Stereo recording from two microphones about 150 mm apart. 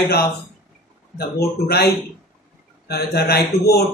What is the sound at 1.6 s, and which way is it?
A man's voice, 90° left.